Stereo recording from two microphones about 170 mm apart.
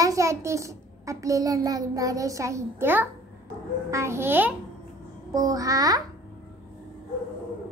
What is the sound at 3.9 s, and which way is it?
Child singing, 15° right (ahead or behind).